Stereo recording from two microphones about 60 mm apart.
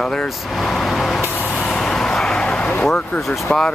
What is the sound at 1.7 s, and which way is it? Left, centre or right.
Vehicle, centre.